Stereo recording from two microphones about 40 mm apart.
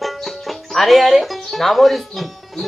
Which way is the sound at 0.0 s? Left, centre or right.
Centre.